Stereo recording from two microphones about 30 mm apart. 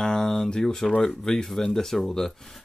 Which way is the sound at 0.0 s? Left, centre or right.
Centre.